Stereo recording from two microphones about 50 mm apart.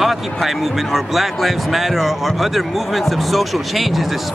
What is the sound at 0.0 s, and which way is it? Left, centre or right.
Speech, centre.